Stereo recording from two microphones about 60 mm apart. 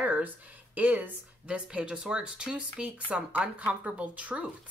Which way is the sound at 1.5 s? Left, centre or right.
Centre.